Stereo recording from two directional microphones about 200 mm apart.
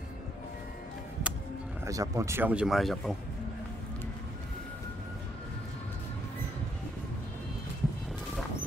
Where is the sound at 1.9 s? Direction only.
15° right (ahead or behind); by 3.2 s centre (ahead or behind).